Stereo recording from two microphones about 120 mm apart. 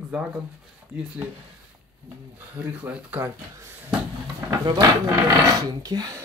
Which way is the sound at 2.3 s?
15° right (ahead or behind).